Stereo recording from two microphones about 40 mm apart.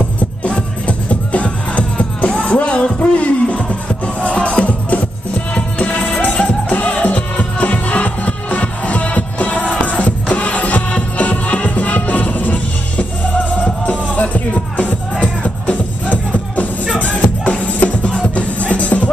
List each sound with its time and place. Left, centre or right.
0.4 s music: left
6.3 s music: left
6.8 s music: left